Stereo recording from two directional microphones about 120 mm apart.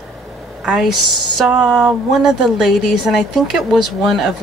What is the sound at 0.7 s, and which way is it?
Speech, 5° right (ahead or behind).